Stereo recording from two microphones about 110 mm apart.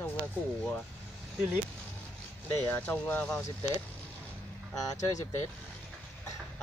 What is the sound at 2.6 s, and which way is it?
Speech, 20° left (ahead or behind).